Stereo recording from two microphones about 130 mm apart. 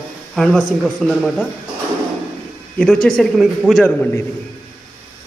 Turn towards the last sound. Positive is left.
turn(degrees=10)  # may be behind; listen again after turning